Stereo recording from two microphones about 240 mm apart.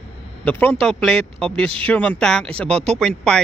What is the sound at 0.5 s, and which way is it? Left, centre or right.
Speech, centre.